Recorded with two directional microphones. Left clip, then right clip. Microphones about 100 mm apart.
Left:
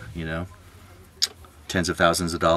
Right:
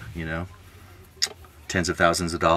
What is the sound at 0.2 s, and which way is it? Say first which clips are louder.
Speech: even; 10° left (ahead or behind).